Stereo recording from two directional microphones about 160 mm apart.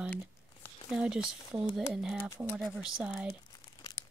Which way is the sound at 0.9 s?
5° right (ahead or behind).